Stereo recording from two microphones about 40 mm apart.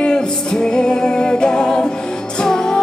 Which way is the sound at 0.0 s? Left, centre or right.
Centre.